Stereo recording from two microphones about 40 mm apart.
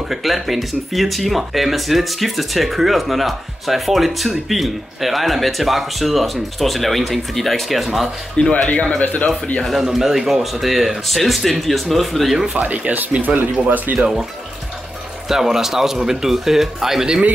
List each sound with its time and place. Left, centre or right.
0.1 s speech: centre
8.4 s speech: left
9.8 s speech: centre
12.5 s speech: right
13.4 s speech: right
13.9 s speech: centre
15.2 s speech: centre